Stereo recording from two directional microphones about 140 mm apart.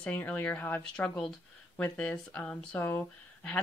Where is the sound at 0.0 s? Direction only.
10° left (ahead or behind).